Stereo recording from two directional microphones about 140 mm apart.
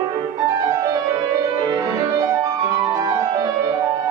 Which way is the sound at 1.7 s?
25° right (ahead or behind).